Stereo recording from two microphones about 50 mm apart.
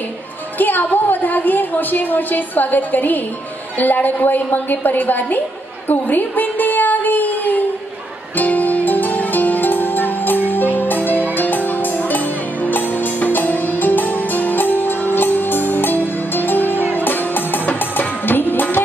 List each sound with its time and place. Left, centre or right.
0.6 s a woman's voice: left
8.4 s music: left